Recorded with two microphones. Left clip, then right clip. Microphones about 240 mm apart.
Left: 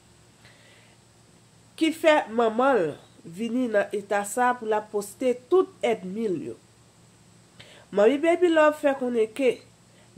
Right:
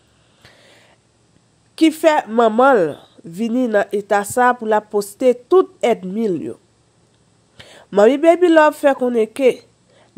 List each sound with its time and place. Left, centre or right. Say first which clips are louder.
0.4 s a sound: right 7 dB; right
1.8 s a woman's voice: right 7 dB; right
7.5 s speech: right 8 dB; right